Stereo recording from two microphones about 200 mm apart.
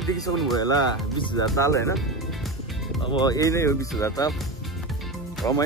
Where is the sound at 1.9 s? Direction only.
Centre (ahead or behind).